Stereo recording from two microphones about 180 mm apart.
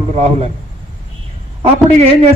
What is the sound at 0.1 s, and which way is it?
Speech, 35° right (ahead or behind).